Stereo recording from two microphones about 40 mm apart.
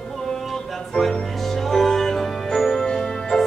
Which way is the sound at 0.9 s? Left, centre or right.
Centre.